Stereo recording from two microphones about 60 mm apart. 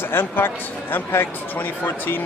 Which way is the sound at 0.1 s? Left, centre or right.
Left.